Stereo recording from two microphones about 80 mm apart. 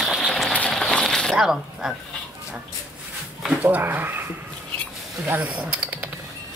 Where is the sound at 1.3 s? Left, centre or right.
Centre.